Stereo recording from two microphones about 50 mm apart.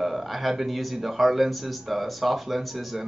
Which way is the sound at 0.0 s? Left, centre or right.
Centre.